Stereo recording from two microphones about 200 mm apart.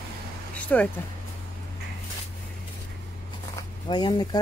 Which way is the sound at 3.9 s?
20° left (ahead or behind).